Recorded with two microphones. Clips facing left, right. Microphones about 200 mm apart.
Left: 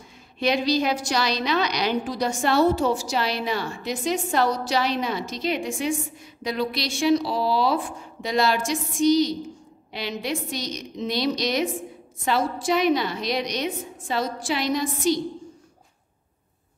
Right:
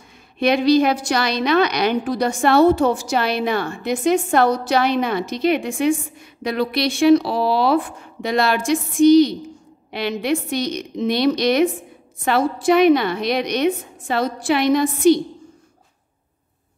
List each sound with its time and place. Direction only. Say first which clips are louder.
0.4 s a woman's voice: right 7 dB; 60° right (ahead or behind)